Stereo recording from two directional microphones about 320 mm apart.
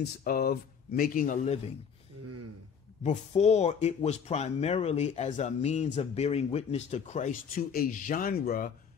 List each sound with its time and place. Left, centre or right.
0.2 s speech: left
2.2 s a sound: right
3.0 s speech: left